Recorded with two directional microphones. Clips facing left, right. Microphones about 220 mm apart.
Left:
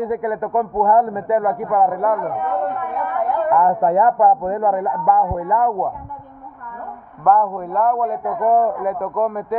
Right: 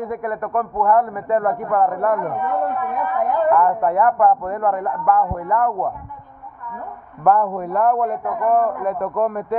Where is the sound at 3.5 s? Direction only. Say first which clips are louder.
Left 2 dB; 25° left (ahead or behind).